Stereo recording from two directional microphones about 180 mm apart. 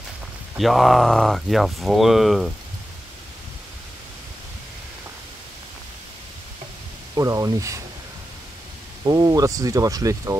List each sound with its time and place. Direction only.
0.6 s speech: centre (ahead or behind)
7.2 s speech: 20° right (ahead or behind)
9.0 s speech: 20° right (ahead or behind)